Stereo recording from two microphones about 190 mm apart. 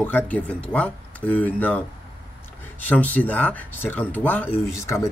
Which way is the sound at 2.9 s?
10° left (ahead or behind).